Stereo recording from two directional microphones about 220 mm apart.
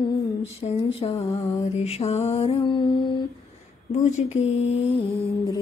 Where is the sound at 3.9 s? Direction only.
30° left (ahead or behind).